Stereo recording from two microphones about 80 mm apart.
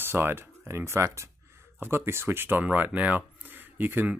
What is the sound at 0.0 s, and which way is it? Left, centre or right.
Speech, right.